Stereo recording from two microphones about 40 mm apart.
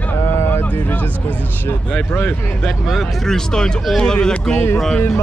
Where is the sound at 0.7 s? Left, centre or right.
Left.